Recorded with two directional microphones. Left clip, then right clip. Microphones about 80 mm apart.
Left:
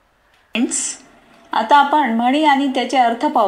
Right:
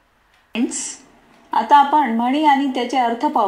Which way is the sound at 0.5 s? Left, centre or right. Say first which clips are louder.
Left 3 dB; left.